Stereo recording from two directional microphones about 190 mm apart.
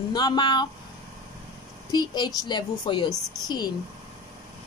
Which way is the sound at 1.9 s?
20° left (ahead or behind).